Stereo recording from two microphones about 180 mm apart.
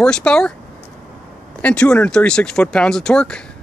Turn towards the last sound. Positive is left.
turn(degrees=5)  # may be behind; listen again after turning